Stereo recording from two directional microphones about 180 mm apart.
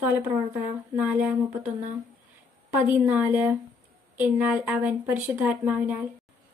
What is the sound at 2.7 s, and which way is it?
A woman's voice, 10° right (ahead or behind).